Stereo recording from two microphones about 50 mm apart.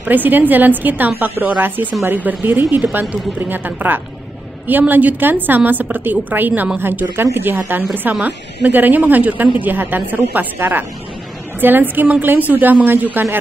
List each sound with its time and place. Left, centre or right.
0.0 s a woman's voice: right
11.6 s a woman's voice: right